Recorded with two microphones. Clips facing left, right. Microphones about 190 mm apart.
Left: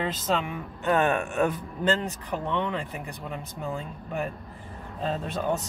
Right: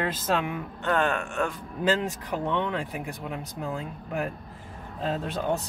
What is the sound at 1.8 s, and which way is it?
Speech, 5° right (ahead or behind).